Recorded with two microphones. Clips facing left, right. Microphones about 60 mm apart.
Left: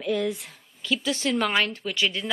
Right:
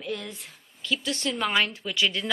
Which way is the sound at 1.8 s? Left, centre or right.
Left.